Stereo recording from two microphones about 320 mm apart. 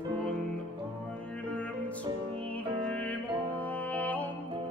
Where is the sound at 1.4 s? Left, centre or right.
Centre.